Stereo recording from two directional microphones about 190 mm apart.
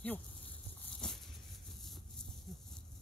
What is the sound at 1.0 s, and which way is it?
Dog, centre (ahead or behind).